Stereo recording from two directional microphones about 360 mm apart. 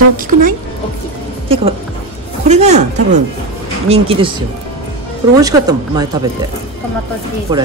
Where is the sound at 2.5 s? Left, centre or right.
Centre.